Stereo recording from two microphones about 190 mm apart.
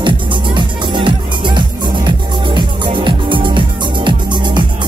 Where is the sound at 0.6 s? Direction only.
25° right (ahead or behind).